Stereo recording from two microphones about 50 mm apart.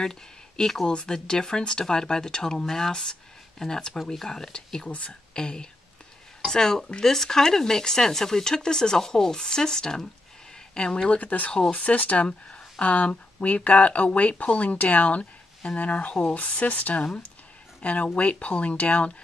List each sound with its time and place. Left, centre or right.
0.0 s speech: centre
4.8 s speech: left